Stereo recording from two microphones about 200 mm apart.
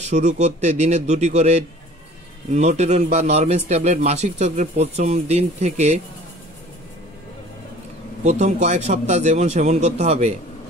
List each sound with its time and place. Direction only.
0.0 s a man's voice: 35° right (ahead or behind)
8.2 s a man's voice: 35° right (ahead or behind)